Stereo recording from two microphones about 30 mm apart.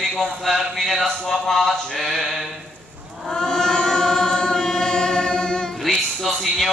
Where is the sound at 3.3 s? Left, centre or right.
Left.